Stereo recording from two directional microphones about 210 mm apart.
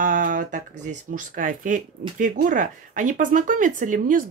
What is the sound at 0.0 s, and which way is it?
Speech, 40° right (ahead or behind).